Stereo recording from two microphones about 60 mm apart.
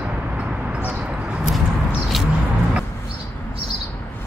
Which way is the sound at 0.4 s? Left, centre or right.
Right.